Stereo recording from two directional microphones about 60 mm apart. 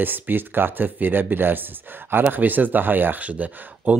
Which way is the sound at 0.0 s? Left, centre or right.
Right.